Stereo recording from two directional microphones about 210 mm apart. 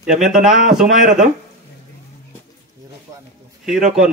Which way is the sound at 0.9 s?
35° right (ahead or behind).